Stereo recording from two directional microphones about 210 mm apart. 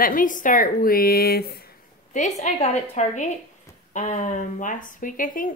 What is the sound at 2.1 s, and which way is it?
Speech, 35° left (ahead or behind).